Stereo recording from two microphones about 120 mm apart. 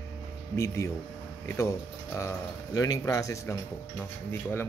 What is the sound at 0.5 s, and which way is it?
Speech, 25° left (ahead or behind).